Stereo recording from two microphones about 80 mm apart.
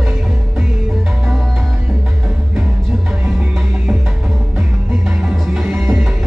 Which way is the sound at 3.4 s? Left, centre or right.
Centre.